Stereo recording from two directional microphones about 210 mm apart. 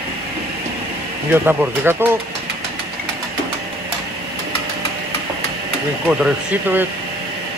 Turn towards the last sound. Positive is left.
turn(degrees=-10)  # may be behind; listen again after turning